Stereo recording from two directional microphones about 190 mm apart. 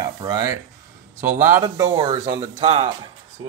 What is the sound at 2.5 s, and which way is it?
Speech, 35° right (ahead or behind).